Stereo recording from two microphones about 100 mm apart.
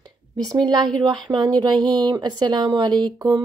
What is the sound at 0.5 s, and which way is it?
Speech, 40° right (ahead or behind).